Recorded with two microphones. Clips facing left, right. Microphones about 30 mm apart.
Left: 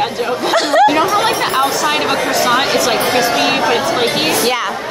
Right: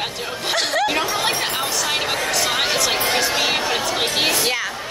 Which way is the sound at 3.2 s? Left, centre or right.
Centre.